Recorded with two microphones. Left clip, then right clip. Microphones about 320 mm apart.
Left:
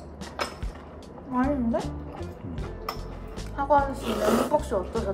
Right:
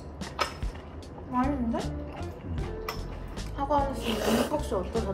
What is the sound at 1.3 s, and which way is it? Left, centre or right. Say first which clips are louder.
Music: left 3 dB; centre.